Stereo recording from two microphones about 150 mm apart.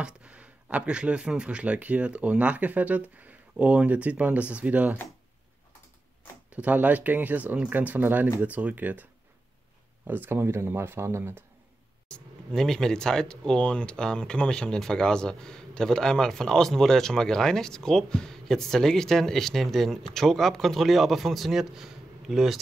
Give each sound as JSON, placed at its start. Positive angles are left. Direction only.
{"t": 0.0, "sound": "speech", "side_deg": -10}
{"t": 6.5, "sound": "speech", "side_deg": -10}
{"t": 10.0, "sound": "speech", "side_deg": -15}
{"t": 12.1, "sound": "speech", "side_deg": 5}